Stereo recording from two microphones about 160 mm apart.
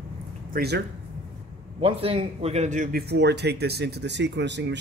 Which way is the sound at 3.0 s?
90° right.